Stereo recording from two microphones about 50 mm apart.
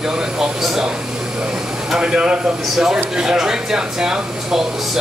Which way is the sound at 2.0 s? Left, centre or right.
Centre.